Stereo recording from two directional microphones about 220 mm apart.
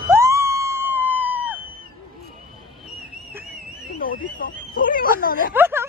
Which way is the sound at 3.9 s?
40° left (ahead or behind).